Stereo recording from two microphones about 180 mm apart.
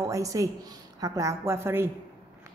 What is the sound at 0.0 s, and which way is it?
A woman's voice, 20° right (ahead or behind).